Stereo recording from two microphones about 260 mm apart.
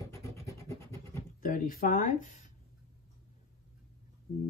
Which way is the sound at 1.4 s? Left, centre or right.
Left.